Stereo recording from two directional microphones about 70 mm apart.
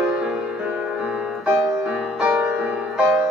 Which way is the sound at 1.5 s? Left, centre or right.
Right.